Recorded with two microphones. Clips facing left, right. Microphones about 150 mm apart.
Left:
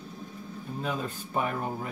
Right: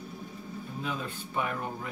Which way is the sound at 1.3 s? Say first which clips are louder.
Left 3 dB; 40° left (ahead or behind).